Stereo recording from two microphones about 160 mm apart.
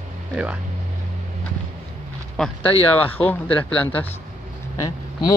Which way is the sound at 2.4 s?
Centre (ahead or behind).